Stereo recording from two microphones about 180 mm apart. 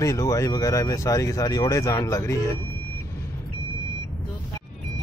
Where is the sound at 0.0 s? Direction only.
20° left (ahead or behind).